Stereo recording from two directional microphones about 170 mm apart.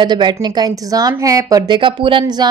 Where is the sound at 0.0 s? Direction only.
25° right (ahead or behind).